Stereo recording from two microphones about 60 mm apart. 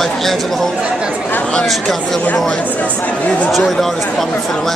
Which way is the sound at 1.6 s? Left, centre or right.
Centre.